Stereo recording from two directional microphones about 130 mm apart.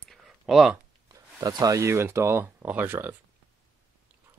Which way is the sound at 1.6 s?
20° right (ahead or behind).